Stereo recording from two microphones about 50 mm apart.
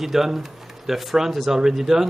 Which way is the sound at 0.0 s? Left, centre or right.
Centre.